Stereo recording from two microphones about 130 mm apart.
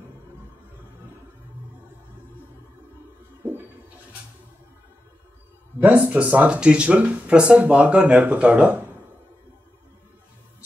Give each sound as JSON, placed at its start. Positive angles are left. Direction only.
{"t": 5.8, "sound": "speech", "side_deg": -15}